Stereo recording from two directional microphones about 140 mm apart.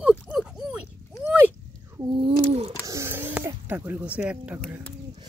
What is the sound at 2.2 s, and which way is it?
Bird, 45° right (ahead or behind).